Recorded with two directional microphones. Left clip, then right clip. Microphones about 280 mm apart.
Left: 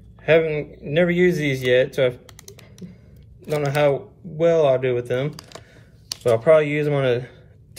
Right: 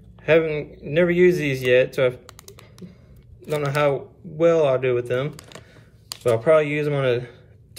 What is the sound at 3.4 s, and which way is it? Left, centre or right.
A man's voice, centre.